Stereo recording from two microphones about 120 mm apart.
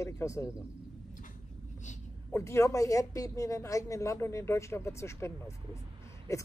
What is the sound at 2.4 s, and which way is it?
Speech, 25° left (ahead or behind).